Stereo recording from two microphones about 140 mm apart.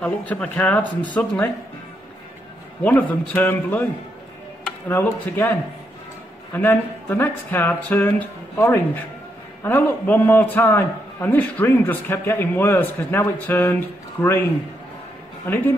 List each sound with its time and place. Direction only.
0.0 s a man's voice: 10° left (ahead or behind)
2.8 s a man's voice: 10° left (ahead or behind)
4.8 s a man's voice: 15° left (ahead or behind)
6.5 s a man's voice: 15° left (ahead or behind)
15.4 s speech: 15° left (ahead or behind)